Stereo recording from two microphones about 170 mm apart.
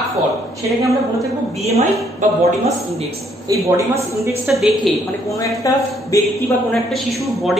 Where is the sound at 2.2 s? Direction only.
45° right (ahead or behind).